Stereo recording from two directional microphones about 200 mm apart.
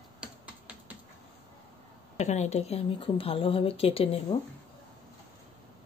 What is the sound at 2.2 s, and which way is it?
A woman's voice, 35° left (ahead or behind).